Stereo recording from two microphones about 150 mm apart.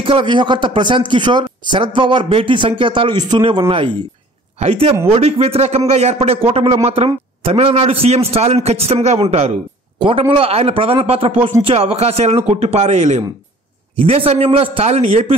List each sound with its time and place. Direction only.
0.0 s a man's voice: 35° right (ahead or behind)